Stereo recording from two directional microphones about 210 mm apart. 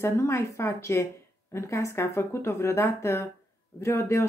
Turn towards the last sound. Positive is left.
turn(degrees=15)  # may be behind; listen again after turning